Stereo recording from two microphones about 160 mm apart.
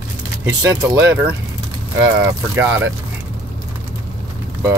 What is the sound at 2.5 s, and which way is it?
Speech, 15° right (ahead or behind).